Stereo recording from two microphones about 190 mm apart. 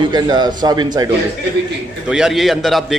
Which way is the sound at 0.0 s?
20° right (ahead or behind).